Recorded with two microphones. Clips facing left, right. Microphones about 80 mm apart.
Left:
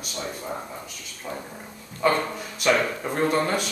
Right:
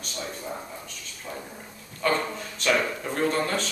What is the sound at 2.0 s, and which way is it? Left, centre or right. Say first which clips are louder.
Speech: left 3 dB; centre.